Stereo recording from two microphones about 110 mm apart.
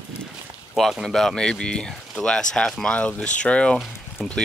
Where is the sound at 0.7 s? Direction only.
Centre (ahead or behind).